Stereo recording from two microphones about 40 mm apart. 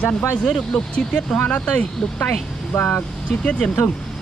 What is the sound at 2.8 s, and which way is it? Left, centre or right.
Speech, left.